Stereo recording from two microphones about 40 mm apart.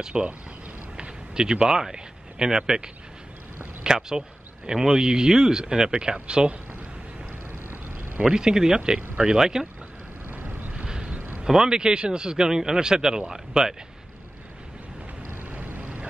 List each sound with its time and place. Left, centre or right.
0.0 s speech: right
0.9 s a sound: right
3.8 s a man's voice: centre
8.2 s a man's voice: centre
10.2 s vehicle: right
10.7 s vehicle: right
11.1 s a sound: right
11.4 s a man's voice: centre
15.4 s vehicle: right